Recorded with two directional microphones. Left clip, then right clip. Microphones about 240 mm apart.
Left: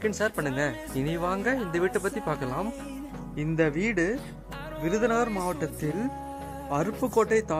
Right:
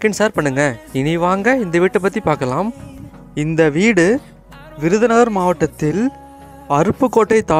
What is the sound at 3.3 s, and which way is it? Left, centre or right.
Speech, right.